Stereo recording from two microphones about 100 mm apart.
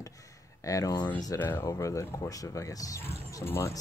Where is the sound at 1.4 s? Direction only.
20° left (ahead or behind).